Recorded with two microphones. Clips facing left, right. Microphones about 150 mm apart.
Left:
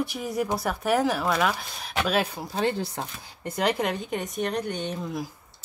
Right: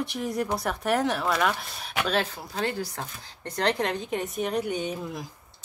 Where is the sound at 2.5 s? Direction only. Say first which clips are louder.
Left 4 dB; 25° left (ahead or behind).